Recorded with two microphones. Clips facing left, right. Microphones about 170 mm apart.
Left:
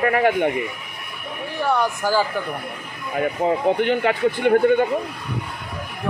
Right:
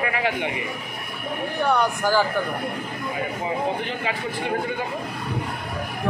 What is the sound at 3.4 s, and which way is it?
Speech, 65° left (ahead or behind).